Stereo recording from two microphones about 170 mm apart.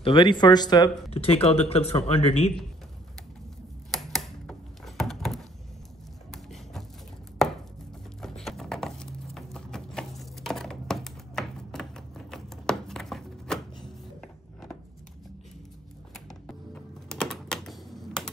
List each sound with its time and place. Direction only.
0.0 s speech: 30° left (ahead or behind)
1.1 s speech: 35° left (ahead or behind)
3.9 s a sound: centre (ahead or behind)
7.4 s chopping: centre (ahead or behind)
8.2 s a sound: centre (ahead or behind)
16.3 s music: 5° left (ahead or behind)